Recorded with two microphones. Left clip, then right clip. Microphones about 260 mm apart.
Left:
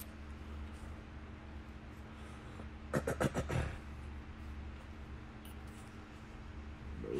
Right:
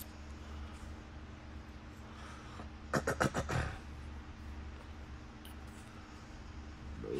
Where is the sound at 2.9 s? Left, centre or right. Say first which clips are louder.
Right 3 dB; centre.